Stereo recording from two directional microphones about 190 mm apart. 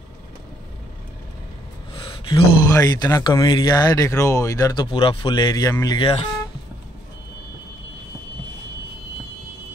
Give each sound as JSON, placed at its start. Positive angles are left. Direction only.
{"t": 2.0, "sound": "speech", "side_deg": 25}